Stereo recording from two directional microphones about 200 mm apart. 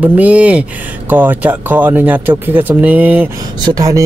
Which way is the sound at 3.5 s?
20° right (ahead or behind).